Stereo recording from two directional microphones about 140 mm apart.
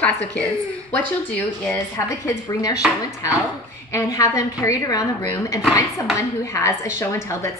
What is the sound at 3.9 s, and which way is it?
A woman's voice, 25° left (ahead or behind).